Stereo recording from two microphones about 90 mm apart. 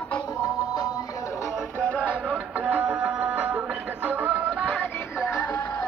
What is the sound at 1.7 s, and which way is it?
Music, 15° left (ahead or behind).